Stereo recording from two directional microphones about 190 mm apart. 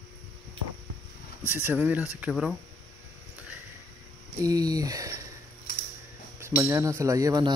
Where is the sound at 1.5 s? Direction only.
10° right (ahead or behind).